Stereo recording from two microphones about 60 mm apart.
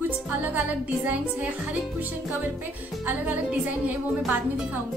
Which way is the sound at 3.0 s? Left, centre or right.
Right.